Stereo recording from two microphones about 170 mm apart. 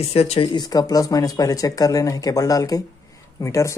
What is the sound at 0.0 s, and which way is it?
Speech, 40° left (ahead or behind).